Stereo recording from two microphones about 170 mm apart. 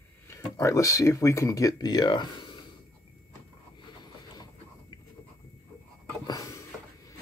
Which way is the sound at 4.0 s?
25° left (ahead or behind).